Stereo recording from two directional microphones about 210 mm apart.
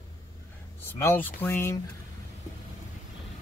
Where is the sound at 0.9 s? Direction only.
10° left (ahead or behind).